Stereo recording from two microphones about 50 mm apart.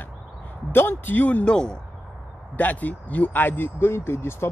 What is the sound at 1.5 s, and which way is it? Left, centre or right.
Speech, centre.